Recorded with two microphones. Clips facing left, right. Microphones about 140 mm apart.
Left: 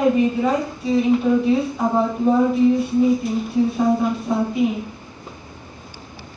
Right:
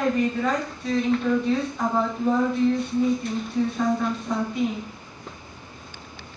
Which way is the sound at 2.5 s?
5° left (ahead or behind).